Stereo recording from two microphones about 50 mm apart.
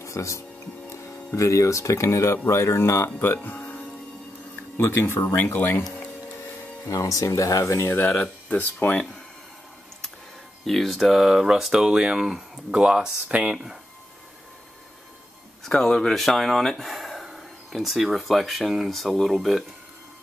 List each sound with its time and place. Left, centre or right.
0.0 s speech: left
2.4 s speech: left
3.4 s music: left
4.7 s speech: left
7.0 s speech: left
8.5 s speech: left
10.6 s speech: centre; by 13.6 s right
15.6 s speech: centre